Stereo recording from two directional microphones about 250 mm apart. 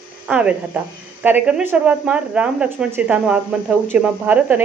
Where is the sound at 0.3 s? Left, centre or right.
Centre.